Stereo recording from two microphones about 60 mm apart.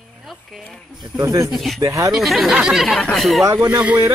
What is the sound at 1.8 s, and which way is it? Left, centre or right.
Speech, right.